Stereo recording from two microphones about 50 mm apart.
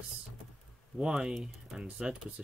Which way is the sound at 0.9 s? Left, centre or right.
Centre.